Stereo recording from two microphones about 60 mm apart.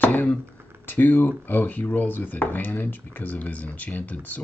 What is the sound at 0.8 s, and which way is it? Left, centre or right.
Speech, left.